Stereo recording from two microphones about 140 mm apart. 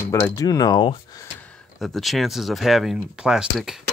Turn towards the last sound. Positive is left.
turn(degrees=-5)  # may be behind; listen again after turning